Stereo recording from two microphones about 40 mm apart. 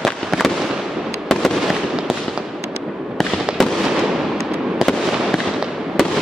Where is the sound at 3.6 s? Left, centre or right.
Centre.